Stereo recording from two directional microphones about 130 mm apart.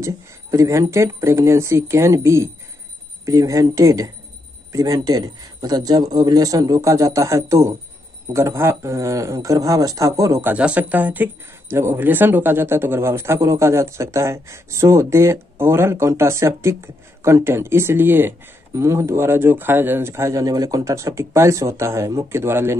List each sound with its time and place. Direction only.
0.0 s a man's voice: 25° right (ahead or behind)
10.5 s a man's voice: 10° right (ahead or behind)